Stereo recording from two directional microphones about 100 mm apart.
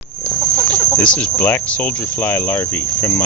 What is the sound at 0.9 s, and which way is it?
Speech, 15° left (ahead or behind).